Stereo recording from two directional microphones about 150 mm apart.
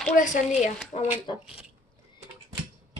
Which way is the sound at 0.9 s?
40° left (ahead or behind).